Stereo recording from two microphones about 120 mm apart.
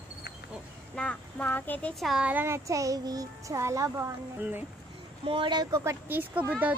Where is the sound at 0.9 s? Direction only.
10° left (ahead or behind).